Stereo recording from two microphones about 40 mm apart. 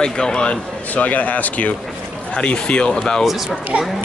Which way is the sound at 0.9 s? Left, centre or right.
Left.